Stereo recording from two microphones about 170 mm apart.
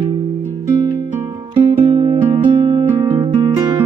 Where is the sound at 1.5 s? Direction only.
35° right (ahead or behind).